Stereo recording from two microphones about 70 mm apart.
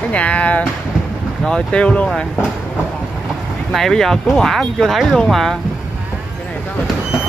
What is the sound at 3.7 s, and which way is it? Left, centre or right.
Speech, centre.